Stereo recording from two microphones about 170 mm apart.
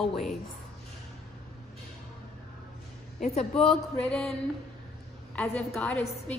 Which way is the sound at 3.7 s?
5° left (ahead or behind).